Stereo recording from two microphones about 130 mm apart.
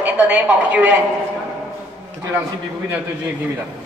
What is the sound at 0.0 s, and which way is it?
Speech, 10° right (ahead or behind).